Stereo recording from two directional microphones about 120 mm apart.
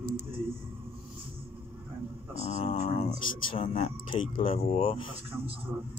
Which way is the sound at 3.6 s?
85° left.